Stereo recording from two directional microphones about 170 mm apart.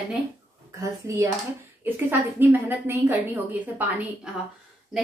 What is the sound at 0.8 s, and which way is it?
Speech, 20° right (ahead or behind).